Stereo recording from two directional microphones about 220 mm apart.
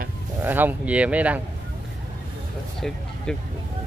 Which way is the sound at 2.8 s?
5° left (ahead or behind).